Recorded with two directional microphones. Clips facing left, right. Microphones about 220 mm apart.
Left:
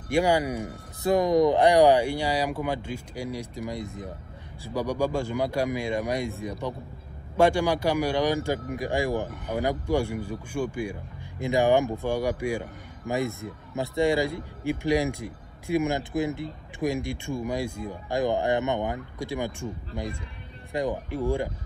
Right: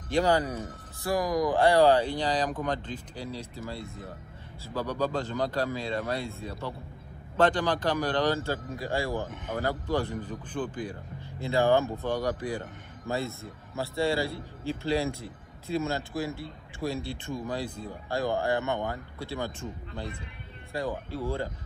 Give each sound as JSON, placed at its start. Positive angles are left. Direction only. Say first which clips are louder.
{"t": 0.1, "sound": "speech", "louder": "left 2 dB", "side_deg": 10}